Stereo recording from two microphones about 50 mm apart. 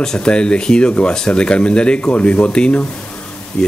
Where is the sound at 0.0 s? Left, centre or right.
Centre.